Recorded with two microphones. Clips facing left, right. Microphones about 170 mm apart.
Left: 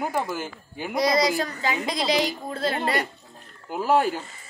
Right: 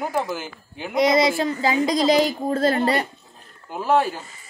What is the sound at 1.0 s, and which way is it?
Speech, 25° right (ahead or behind).